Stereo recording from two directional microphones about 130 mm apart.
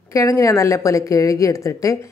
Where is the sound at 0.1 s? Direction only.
25° left (ahead or behind).